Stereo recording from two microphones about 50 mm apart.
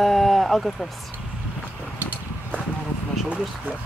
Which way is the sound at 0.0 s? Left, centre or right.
Centre.